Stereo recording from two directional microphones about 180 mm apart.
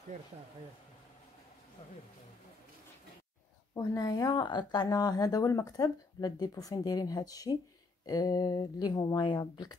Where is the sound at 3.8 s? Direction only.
20° left (ahead or behind).